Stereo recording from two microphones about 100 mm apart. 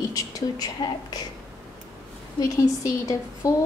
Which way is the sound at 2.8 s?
30° left (ahead or behind).